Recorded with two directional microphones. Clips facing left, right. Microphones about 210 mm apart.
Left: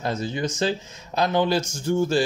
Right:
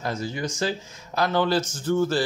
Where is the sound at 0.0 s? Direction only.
25° left (ahead or behind).